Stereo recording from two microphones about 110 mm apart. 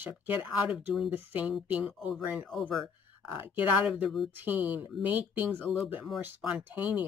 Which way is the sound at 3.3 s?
15° right (ahead or behind).